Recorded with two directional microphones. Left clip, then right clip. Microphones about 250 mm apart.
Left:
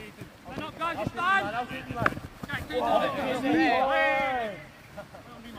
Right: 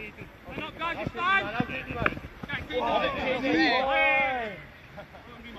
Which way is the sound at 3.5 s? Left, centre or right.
Right.